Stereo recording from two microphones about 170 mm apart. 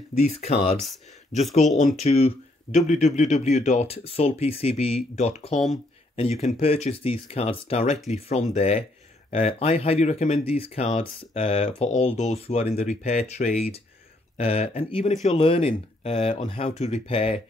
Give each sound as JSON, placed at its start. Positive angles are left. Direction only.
{"t": 0.3, "sound": "speech", "side_deg": 40}